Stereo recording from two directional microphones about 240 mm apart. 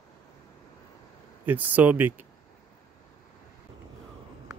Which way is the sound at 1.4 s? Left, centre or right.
Centre.